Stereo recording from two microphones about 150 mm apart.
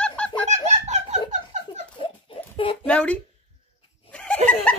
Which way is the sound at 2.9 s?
10° left (ahead or behind).